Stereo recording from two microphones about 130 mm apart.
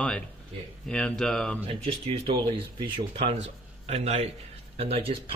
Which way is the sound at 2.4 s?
40° right (ahead or behind).